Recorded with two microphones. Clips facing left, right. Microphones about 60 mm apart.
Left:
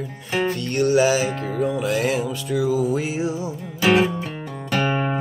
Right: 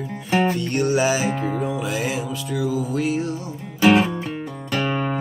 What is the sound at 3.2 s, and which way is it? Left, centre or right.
Music, centre.